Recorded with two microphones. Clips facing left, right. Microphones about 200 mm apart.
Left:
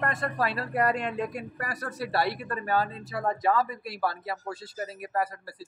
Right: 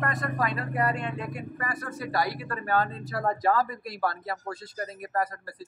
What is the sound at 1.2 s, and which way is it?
Music, 40° left (ahead or behind).